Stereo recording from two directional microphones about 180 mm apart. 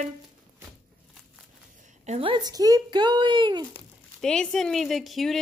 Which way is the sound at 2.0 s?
35° right (ahead or behind).